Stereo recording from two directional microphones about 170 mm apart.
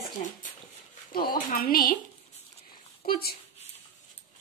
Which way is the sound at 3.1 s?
65° left (ahead or behind).